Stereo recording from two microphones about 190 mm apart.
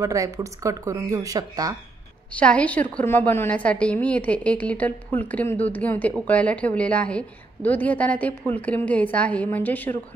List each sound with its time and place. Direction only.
0.0 s speech: 15° right (ahead or behind)
2.3 s a woman's voice: 5° left (ahead or behind)